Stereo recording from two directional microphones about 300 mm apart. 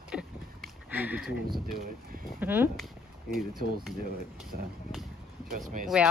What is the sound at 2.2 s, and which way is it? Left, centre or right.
Speech, centre.